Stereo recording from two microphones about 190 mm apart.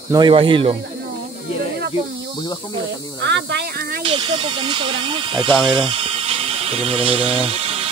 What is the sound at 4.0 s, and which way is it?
Speech, 25° right (ahead or behind).